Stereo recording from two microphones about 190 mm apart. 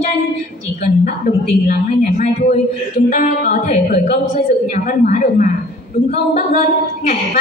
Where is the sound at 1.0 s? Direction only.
45° left (ahead or behind).